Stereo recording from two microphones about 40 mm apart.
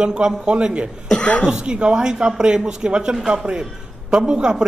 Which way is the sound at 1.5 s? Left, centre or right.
Right.